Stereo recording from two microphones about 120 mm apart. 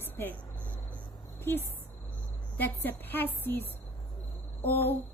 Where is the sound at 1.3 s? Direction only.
20° left (ahead or behind).